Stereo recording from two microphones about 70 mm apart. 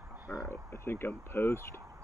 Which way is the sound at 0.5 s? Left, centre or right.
Left.